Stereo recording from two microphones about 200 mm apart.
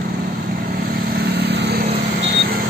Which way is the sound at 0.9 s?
50° right (ahead or behind).